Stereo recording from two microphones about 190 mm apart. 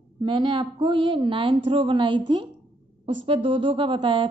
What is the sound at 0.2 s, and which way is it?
A woman's voice, 25° right (ahead or behind).